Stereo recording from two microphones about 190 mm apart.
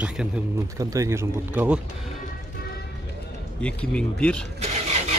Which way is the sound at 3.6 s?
5° left (ahead or behind).